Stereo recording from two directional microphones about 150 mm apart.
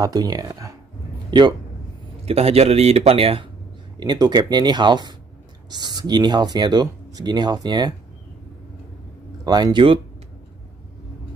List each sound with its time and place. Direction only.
0.0 s speech: 25° right (ahead or behind)
2.2 s speech: 40° right (ahead or behind)
4.0 s speech: 30° right (ahead or behind)
9.4 s speech: 25° right (ahead or behind)